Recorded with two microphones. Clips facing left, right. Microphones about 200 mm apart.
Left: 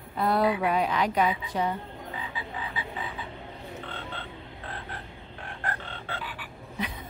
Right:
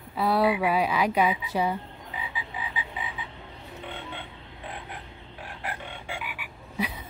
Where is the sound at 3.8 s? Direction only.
15° right (ahead or behind).